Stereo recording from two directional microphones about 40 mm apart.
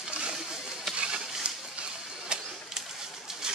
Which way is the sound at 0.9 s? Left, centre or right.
Right.